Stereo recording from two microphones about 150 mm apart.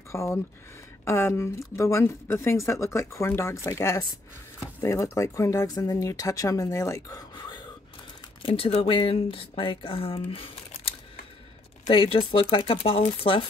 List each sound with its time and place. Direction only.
0.1 s speech: 20° left (ahead or behind); by 13.4 s 35° left (ahead or behind)